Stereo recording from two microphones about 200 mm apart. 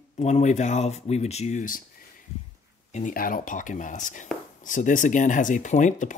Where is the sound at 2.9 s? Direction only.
40° left (ahead or behind).